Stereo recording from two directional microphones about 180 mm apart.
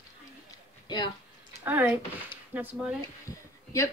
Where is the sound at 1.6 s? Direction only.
10° right (ahead or behind).